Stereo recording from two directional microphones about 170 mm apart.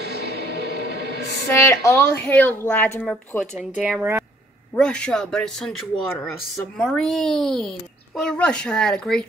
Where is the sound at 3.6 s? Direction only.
5° right (ahead or behind).